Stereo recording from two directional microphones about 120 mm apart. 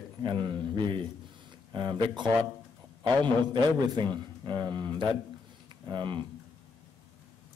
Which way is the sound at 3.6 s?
35° right (ahead or behind).